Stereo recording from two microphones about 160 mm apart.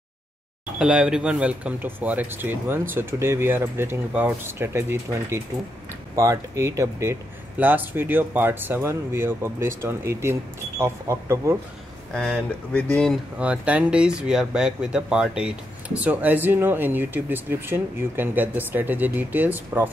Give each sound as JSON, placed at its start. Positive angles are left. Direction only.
{"t": 0.7, "sound": "speech", "side_deg": -5}
{"t": 12.1, "sound": "speech", "side_deg": 5}
{"t": 13.4, "sound": "speech", "side_deg": -10}